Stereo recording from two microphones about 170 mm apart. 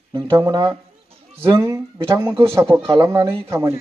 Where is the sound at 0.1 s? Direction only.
20° right (ahead or behind).